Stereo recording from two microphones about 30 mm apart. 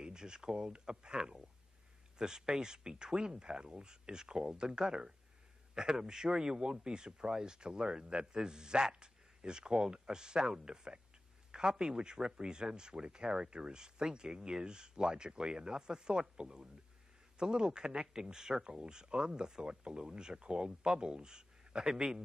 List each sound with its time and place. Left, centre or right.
0.0 s speech: right
1.2 s speech: centre